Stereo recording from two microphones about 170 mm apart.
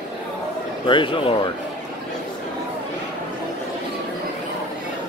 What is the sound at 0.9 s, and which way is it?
Speech, 30° left (ahead or behind).